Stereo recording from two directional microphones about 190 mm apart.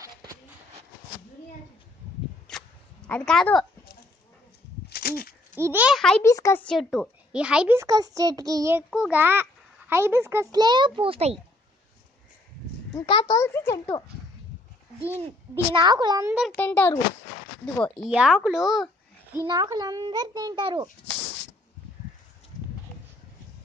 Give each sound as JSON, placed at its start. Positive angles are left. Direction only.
{"t": 0.0, "sound": "a sound", "side_deg": -20}
{"t": 2.5, "sound": "a sound", "side_deg": 5}
{"t": 3.1, "sound": "speech", "side_deg": 5}
{"t": 4.8, "sound": "a sound", "side_deg": 55}
{"t": 5.5, "sound": "speech", "side_deg": -10}
{"t": 6.2, "sound": "a child's voice", "side_deg": 15}
{"t": 12.9, "sound": "a child's voice", "side_deg": 25}
{"t": 13.4, "sound": "a child's voice", "side_deg": 15}
{"t": 15.7, "sound": "a child's voice", "side_deg": -20}
{"t": 16.5, "sound": "a child's voice", "side_deg": 10}
{"t": 19.3, "sound": "a child's voice", "side_deg": -20}